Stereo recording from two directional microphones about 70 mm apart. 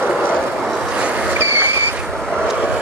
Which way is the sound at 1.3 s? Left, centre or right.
Right.